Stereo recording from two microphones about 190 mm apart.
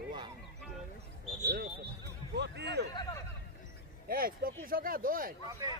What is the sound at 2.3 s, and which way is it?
Speech, 65° right (ahead or behind).